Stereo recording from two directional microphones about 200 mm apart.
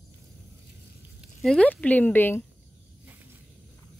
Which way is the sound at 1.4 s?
5° left (ahead or behind).